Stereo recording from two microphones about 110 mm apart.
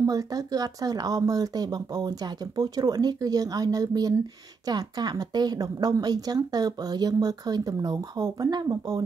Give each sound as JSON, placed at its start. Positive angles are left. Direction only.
{"t": 0.0, "sound": "a woman's voice", "side_deg": -35}